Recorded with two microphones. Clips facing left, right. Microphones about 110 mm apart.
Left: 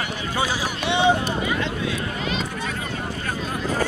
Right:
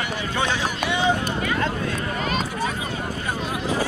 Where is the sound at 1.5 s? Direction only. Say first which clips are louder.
Right 1 dB; 45° right (ahead or behind).